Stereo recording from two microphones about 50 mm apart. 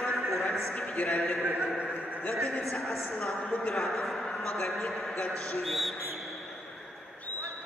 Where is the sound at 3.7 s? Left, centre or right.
Centre.